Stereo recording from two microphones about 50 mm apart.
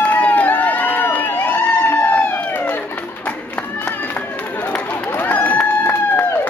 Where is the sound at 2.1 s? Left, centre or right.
Left.